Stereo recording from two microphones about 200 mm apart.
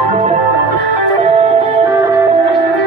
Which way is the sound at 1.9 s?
15° right (ahead or behind).